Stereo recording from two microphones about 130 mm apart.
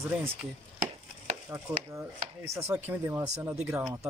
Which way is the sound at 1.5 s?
20° right (ahead or behind).